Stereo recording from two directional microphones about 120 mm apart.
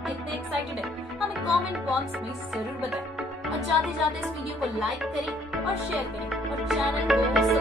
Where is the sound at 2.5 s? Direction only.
5° right (ahead or behind).